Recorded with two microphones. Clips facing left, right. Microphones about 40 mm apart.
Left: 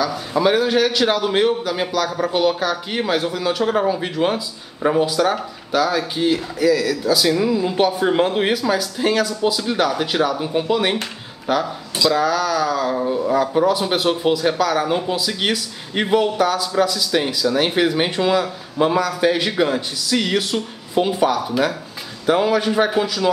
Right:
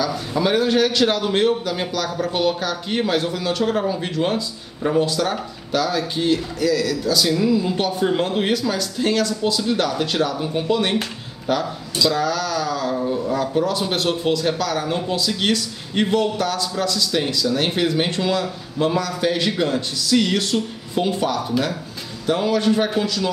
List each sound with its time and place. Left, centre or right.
0.0 s a man's voice: centre
12.9 s speech: centre